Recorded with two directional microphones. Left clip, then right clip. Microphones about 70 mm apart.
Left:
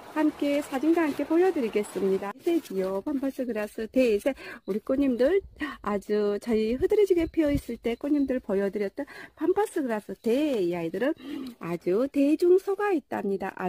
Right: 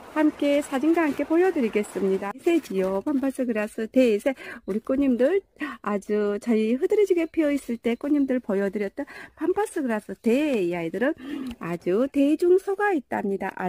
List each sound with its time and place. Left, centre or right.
0.1 s speech: right
2.9 s speech: right
3.4 s speech: right
4.8 s speech: centre
7.5 s speech: right
8.4 s speech: right
9.4 s speech: centre
9.8 s speech: right
10.2 s speech: right
12.0 s speech: right